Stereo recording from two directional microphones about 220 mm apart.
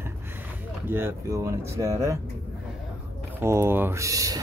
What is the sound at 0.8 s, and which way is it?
A man's voice, 10° right (ahead or behind).